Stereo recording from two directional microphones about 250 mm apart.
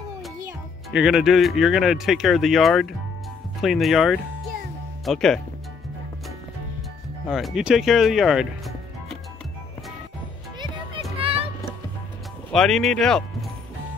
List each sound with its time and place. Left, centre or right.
0.5 s speech: centre
7.2 s speech: centre
11.1 s music: right
12.4 s speech: centre